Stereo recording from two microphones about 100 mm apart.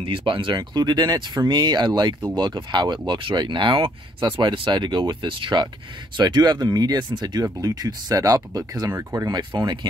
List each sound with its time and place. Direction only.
0.0 s speech: 60° right (ahead or behind); by 9.3 s 30° right (ahead or behind)
9.3 s speech: 45° right (ahead or behind)